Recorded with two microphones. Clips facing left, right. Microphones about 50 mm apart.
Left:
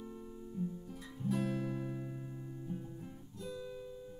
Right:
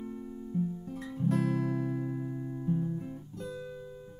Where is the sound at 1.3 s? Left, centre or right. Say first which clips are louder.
Right 5 dB; right.